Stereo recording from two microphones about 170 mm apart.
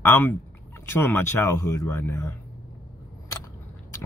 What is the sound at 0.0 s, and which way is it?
Speech, 10° left (ahead or behind).